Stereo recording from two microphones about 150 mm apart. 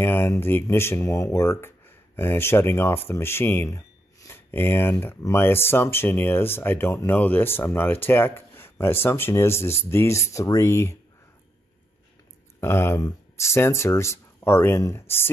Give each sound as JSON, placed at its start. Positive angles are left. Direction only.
{"t": 0.0, "sound": "speech", "side_deg": 15}
{"t": 12.5, "sound": "speech", "side_deg": 15}